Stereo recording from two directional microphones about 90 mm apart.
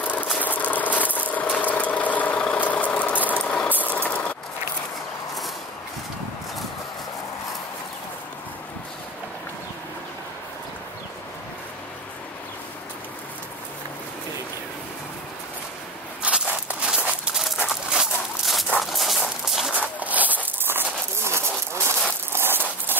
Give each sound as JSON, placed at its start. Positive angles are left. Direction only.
{"t": 0.0, "sound": "engine", "side_deg": 20}
{"t": 1.6, "sound": "vehicle", "side_deg": 15}
{"t": 16.2, "sound": "walk", "side_deg": -15}
{"t": 17.6, "sound": "dog", "side_deg": 0}
{"t": 19.8, "sound": "a sound", "side_deg": -15}